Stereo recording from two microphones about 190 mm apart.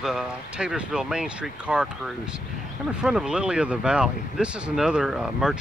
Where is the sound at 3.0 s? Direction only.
5° right (ahead or behind).